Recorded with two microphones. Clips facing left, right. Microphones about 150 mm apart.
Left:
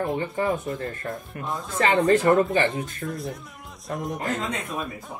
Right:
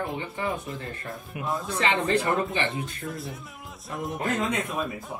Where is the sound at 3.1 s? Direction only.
Centre (ahead or behind).